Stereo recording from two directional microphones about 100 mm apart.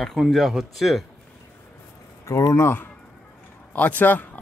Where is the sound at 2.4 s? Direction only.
30° left (ahead or behind).